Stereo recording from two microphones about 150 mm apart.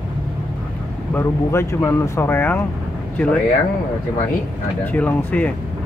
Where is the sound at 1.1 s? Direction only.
15° left (ahead or behind).